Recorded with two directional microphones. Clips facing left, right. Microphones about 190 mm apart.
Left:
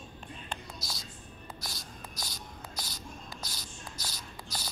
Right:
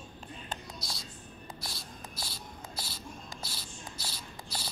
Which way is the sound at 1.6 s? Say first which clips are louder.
Even; centre (ahead or behind).